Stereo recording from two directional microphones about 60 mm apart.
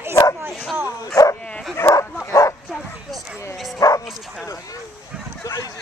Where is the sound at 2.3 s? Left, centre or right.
Left.